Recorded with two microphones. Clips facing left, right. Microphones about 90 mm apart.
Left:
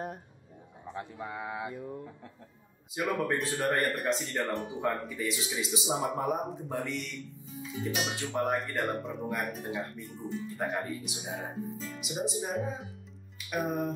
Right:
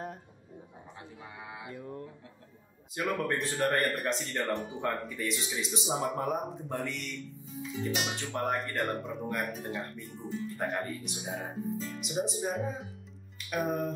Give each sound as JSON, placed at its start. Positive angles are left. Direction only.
{"t": 1.2, "sound": "speech", "side_deg": 65}
{"t": 1.7, "sound": "speech", "side_deg": 5}